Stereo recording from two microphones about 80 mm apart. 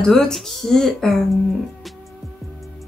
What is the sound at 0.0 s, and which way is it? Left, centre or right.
Speech, centre.